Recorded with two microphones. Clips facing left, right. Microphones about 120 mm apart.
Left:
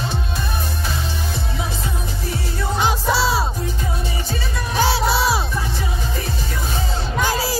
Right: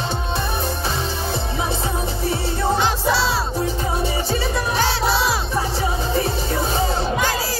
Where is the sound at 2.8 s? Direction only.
5° left (ahead or behind).